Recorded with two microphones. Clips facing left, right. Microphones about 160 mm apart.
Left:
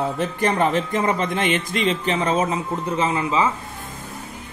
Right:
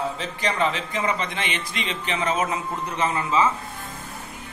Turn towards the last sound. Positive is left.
turn(degrees=25)  # may be behind; listen again after turning